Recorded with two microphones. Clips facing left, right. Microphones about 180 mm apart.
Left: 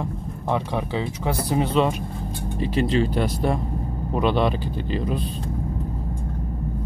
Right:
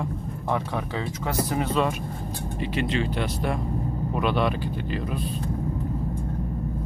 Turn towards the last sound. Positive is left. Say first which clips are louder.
# left 3 dB
turn(degrees=30)  # may be behind; listen again after turning